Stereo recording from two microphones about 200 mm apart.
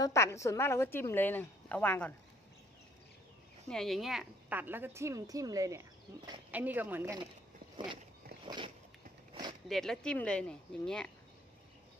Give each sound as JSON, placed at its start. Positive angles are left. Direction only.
{"t": 0.0, "sound": "a woman's voice", "side_deg": 15}
{"t": 3.6, "sound": "a woman's voice", "side_deg": 0}
{"t": 7.7, "sound": "a sound", "side_deg": -25}
{"t": 9.7, "sound": "speech", "side_deg": 0}